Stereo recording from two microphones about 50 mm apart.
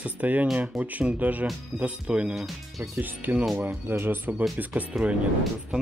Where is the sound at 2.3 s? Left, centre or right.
Centre.